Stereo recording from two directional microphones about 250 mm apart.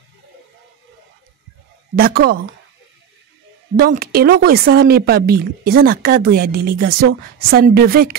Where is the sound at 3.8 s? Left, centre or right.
Right.